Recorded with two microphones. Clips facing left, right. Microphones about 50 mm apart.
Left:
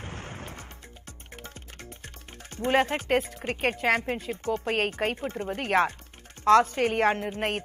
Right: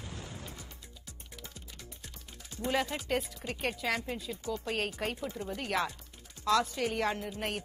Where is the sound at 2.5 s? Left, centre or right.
Left.